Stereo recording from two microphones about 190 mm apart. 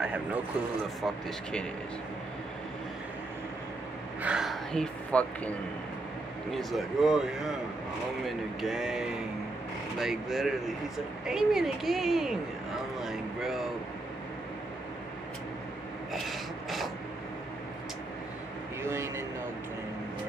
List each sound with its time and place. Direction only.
0.0 s speech: 10° right (ahead or behind)
1.0 s speech: 5° left (ahead or behind)
4.2 s speech: 5° right (ahead or behind)
6.5 s speech: centre (ahead or behind)
13.0 s a sound: centre (ahead or behind)
16.1 s filing: centre (ahead or behind)
18.8 s a sound: 15° right (ahead or behind)